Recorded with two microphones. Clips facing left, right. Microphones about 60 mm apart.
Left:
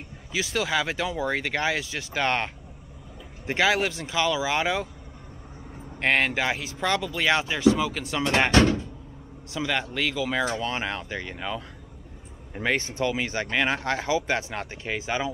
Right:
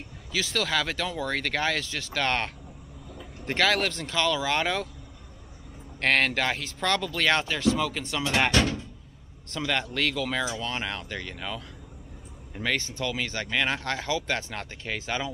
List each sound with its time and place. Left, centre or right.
0.3 s speech: centre
5.9 s speech: centre
8.5 s a sound: left
9.5 s speech: centre
10.6 s speech: left